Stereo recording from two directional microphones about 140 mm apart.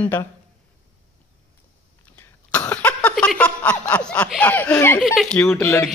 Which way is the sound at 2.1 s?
15° left (ahead or behind).